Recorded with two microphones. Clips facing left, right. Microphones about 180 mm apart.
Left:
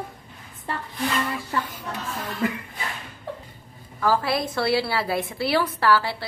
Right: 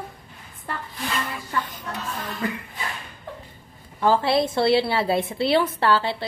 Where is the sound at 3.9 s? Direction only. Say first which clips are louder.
Right 3 dB; 25° right (ahead or behind).